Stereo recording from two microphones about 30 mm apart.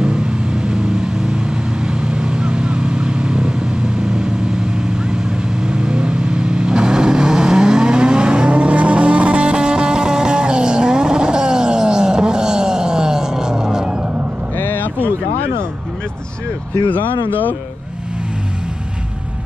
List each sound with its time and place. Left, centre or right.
0.0 s vehicle: right
16.9 s speech: left